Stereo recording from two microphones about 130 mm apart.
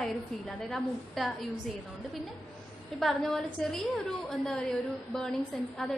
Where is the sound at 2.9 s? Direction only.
Centre (ahead or behind).